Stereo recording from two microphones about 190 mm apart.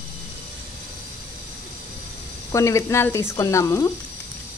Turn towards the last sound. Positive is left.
turn(degrees=15)  # may be behind; listen again after turning